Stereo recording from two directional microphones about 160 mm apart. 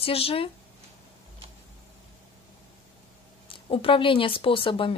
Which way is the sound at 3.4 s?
35° left (ahead or behind).